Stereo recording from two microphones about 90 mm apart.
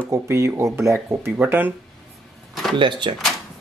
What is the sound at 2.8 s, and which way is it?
Speech, 60° right (ahead or behind).